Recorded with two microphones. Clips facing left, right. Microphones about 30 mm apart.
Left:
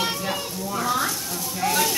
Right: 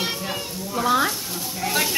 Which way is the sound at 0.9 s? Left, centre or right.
Centre.